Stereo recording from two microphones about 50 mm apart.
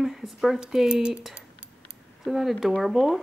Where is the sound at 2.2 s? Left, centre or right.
Centre.